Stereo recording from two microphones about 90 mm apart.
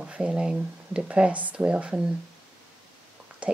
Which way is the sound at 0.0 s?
10° right (ahead or behind).